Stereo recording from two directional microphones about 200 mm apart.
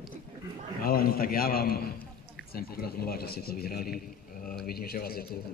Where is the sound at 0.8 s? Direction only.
50° left (ahead or behind).